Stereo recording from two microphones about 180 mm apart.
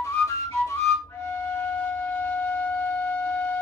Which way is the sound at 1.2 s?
10° left (ahead or behind).